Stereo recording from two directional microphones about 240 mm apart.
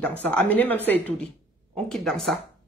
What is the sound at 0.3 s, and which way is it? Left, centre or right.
A woman's voice, centre.